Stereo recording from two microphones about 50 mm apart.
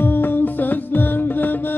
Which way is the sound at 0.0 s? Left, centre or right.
Left.